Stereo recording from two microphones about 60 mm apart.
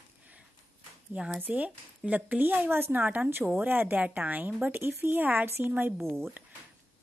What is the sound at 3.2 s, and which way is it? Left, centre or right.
Speech, right.